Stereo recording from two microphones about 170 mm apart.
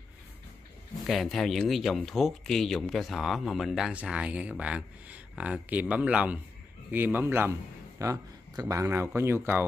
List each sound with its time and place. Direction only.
1.0 s speech: centre (ahead or behind)